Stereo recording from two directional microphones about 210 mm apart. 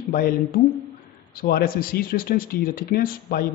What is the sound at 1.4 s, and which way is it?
Speech, 40° left (ahead or behind).